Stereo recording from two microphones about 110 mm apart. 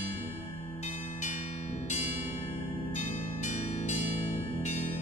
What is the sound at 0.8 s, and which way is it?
Bell, 90° left.